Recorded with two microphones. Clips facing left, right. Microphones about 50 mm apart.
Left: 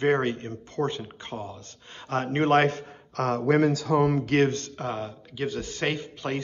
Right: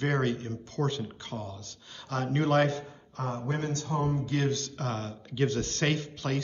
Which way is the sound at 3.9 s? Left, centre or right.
Left.